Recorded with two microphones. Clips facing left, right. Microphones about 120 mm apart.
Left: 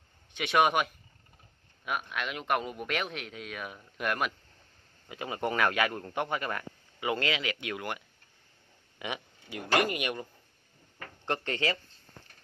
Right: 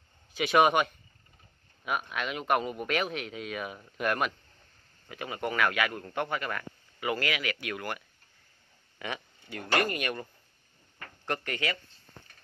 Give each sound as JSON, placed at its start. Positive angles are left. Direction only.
{"t": 0.3, "sound": "speech", "side_deg": 0}
{"t": 5.0, "sound": "a man's voice", "side_deg": 20}
{"t": 11.2, "sound": "a man's voice", "side_deg": 25}